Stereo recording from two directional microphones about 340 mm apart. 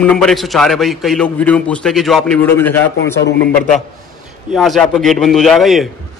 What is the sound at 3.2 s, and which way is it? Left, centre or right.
Speech, left.